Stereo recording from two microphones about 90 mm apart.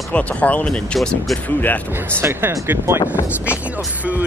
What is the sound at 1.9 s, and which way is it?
Speech, 25° right (ahead or behind).